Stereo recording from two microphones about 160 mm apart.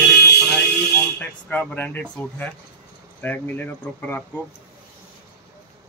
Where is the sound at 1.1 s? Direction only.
10° left (ahead or behind).